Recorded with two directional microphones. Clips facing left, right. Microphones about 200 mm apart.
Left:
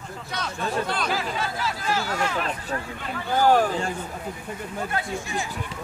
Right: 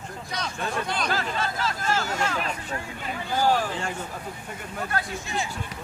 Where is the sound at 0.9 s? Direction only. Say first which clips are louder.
Left 1 dB; 5° left (ahead or behind).